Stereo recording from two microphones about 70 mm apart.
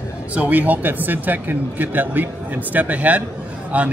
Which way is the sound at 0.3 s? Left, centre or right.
Right.